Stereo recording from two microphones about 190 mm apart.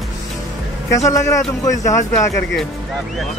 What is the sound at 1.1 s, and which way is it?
Speech, 15° left (ahead or behind).